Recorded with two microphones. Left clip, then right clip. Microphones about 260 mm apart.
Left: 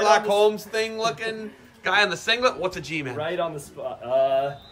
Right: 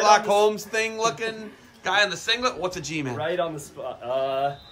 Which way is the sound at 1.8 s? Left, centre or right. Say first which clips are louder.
Left 1 dB; centre.